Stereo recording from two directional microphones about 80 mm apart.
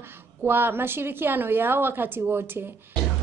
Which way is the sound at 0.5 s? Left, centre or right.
Right.